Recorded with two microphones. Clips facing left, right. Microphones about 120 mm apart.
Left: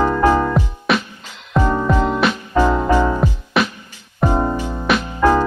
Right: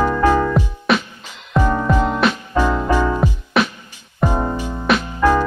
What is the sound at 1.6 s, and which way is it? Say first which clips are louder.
Music: even; 15° left (ahead or behind).